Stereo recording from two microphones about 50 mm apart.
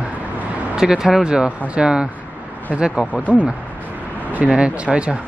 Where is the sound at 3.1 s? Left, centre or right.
Left.